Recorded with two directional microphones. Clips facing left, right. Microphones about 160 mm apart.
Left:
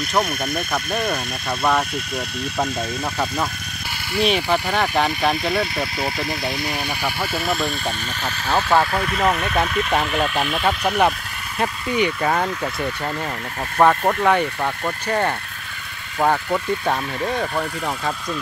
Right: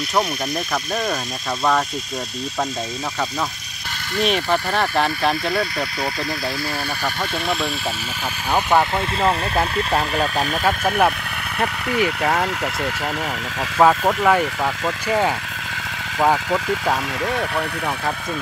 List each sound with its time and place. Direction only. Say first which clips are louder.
4.2 s speech: even; 5° left (ahead or behind)
8.5 s speech: even; 15° right (ahead or behind)
10.9 s speech: even; centre (ahead or behind)
13.7 s speech: right 1 dB; 5° right (ahead or behind)